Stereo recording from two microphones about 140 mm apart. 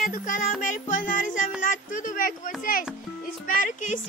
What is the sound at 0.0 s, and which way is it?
Music, 70° left (ahead or behind).